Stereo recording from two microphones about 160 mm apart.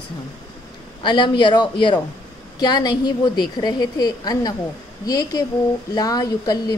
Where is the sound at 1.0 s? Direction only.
30° left (ahead or behind).